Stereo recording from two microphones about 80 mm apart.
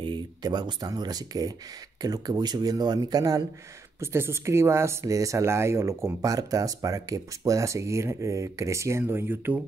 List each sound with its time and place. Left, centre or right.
0.0 s speech: right
4.0 s speech: right
6.2 s speech: right